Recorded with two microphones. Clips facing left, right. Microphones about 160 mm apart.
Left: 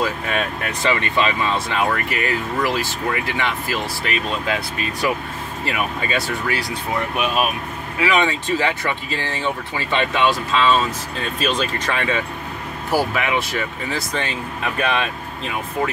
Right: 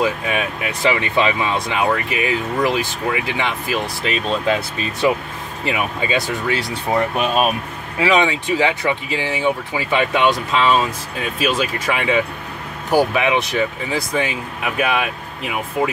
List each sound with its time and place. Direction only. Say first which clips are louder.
0.0 s speech: right 2 dB; 10° right (ahead or behind); by 7.4 s 30° right (ahead or behind)
8.0 s speech: right 3 dB; 20° right (ahead or behind)